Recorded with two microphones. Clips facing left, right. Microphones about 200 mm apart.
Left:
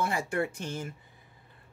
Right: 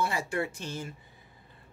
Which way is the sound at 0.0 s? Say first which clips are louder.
Left 1 dB; 55° left (ahead or behind).